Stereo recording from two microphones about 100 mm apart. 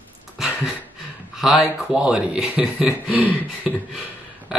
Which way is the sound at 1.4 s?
5° right (ahead or behind).